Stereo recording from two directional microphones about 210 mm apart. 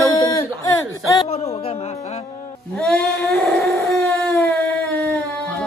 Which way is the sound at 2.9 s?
5° left (ahead or behind).